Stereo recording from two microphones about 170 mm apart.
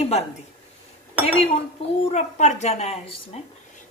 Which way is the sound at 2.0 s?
40° left (ahead or behind).